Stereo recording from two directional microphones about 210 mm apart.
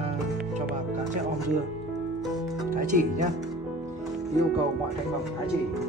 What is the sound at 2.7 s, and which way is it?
Speech, 40° right (ahead or behind).